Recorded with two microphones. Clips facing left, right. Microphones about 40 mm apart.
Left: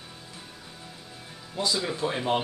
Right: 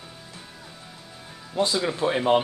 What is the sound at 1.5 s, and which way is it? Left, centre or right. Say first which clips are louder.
Speech: right 4 dB; right.